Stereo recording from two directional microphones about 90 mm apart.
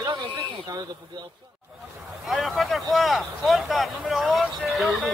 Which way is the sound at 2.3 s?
Centre (ahead or behind).